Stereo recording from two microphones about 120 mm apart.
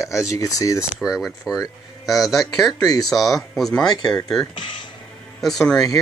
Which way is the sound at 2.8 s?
30° left (ahead or behind).